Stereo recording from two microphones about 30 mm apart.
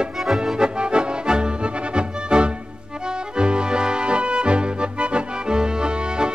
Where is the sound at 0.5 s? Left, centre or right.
Right.